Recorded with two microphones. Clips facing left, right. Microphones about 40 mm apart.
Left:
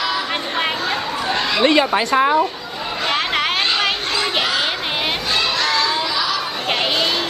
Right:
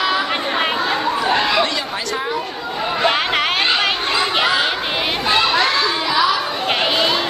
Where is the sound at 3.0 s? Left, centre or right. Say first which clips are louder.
Right 1 dB; centre.